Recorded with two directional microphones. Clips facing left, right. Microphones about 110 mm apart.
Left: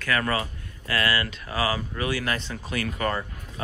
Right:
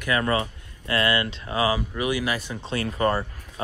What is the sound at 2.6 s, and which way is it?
Speech, 30° right (ahead or behind).